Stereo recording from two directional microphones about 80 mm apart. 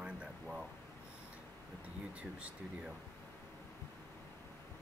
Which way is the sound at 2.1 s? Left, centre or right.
Centre.